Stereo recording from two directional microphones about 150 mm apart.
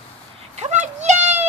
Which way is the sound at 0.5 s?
50° right (ahead or behind).